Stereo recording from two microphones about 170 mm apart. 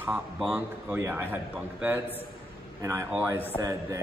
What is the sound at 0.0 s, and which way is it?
A man's voice, 10° right (ahead or behind).